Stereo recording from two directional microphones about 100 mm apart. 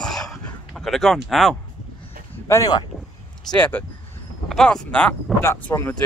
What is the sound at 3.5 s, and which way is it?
Speech, 20° left (ahead or behind).